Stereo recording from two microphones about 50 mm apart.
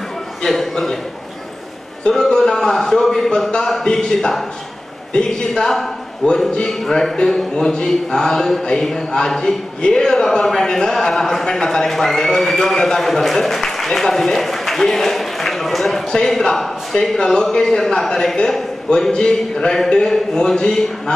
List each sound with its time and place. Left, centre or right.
0.4 s a man's voice: centre
2.0 s a man's voice: centre